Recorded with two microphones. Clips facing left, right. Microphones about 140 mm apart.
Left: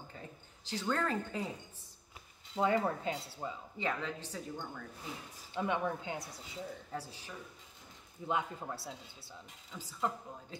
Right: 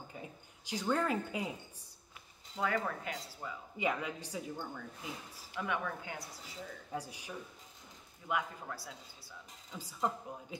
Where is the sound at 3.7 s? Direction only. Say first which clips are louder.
Right 3 dB; 10° right (ahead or behind).